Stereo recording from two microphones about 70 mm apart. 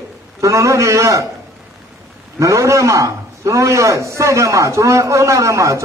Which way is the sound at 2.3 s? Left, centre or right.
Right.